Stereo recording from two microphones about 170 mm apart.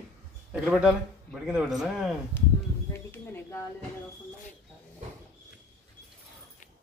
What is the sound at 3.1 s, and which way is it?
Bird, 15° left (ahead or behind).